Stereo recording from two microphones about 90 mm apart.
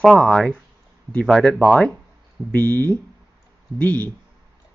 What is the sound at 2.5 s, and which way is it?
Speech, 15° left (ahead or behind).